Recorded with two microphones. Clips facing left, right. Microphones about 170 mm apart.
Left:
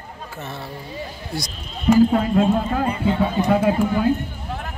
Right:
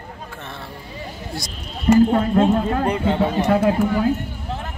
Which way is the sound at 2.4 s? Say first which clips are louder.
Right 1 dB; 70° right (ahead or behind).